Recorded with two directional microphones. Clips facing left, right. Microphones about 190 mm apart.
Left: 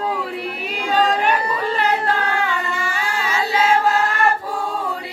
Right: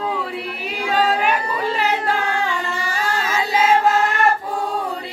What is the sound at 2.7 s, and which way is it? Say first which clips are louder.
Singing: right 1 dB; 40° right (ahead or behind).